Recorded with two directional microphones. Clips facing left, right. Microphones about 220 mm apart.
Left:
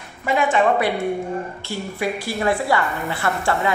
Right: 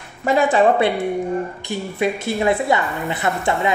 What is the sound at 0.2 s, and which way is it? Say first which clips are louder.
Speech: right 3 dB; 40° right (ahead or behind).